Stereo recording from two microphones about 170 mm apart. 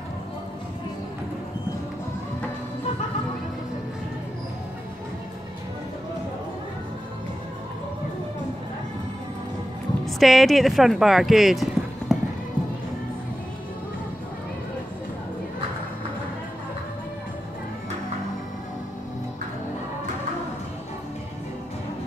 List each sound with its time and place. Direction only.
10.0 s speech: centre (ahead or behind)